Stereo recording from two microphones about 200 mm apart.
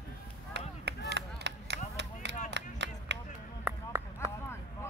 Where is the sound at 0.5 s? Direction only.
55° right (ahead or behind).